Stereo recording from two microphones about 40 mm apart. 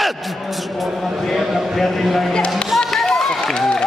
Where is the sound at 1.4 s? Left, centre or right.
Centre.